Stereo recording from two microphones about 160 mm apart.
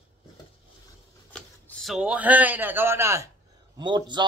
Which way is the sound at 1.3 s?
5° left (ahead or behind).